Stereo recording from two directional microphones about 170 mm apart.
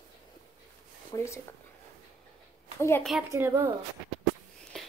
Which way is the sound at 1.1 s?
15° left (ahead or behind).